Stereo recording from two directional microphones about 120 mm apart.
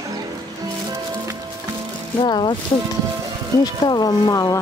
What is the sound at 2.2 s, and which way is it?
Speech, 40° left (ahead or behind).